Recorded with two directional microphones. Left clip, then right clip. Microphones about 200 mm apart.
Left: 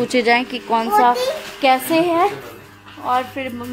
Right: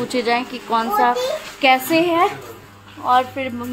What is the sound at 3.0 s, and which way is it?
Speech, 5° left (ahead or behind).